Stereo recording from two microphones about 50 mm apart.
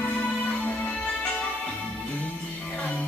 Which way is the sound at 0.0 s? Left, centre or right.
Left.